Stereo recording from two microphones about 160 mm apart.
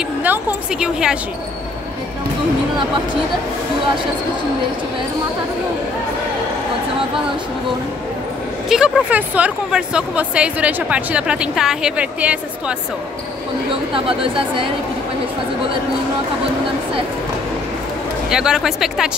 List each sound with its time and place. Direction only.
0.2 s a sound: 10° right (ahead or behind)
8.6 s speech: 5° right (ahead or behind)
13.9 s speech: 35° right (ahead or behind)
18.3 s speech: 5° right (ahead or behind)